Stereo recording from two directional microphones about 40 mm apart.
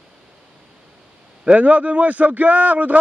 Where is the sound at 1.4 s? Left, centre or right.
Right.